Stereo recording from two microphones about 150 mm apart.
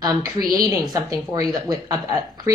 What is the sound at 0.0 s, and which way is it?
Speech, 25° right (ahead or behind).